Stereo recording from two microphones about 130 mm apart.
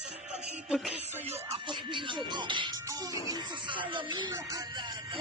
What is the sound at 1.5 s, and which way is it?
Speech, 40° right (ahead or behind).